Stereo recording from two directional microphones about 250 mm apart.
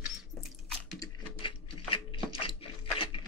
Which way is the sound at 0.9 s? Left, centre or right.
Centre.